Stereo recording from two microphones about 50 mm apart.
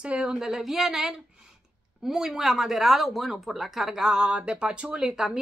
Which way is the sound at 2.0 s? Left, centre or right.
Centre.